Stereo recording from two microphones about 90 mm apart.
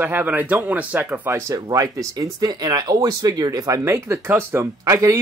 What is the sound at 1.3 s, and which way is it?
Speech, 40° right (ahead or behind).